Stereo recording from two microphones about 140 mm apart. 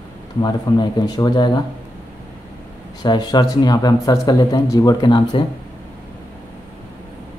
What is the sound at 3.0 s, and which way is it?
Speech, 30° left (ahead or behind).